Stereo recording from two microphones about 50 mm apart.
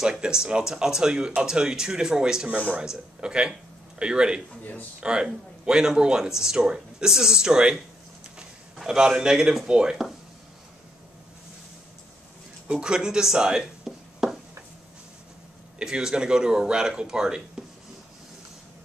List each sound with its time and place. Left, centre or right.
0.0 s speech: centre
2.5 s speech: right
2.8 s speech: centre
8.8 s speech: centre
12.7 s speech: centre
15.8 s speech: centre